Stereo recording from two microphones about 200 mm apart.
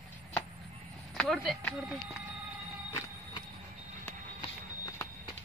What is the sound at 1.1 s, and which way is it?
Speech, centre (ahead or behind).